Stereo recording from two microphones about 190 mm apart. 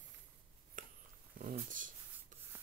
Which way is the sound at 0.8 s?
45° right (ahead or behind).